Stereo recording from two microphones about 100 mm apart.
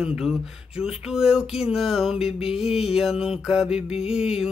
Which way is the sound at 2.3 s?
80° left.